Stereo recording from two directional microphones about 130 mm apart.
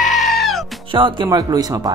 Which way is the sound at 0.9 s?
40° right (ahead or behind).